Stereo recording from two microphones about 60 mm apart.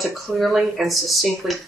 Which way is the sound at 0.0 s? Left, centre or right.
Centre.